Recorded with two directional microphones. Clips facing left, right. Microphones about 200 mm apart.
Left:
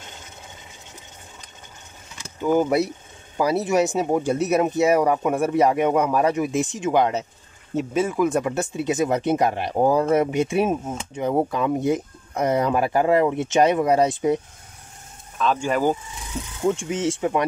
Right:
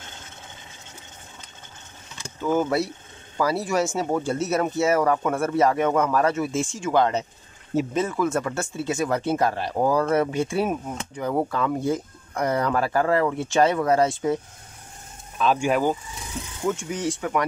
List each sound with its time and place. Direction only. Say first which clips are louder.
2.4 s speech: left 3 dB; 15° left (ahead or behind)
15.3 s speech: right 1 dB; 10° right (ahead or behind)
16.6 s speech: left 4 dB; 25° left (ahead or behind)